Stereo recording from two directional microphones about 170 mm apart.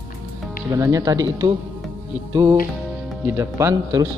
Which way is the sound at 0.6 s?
20° right (ahead or behind).